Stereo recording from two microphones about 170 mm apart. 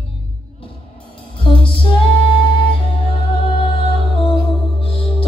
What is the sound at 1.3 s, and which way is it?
Music, 30° left (ahead or behind).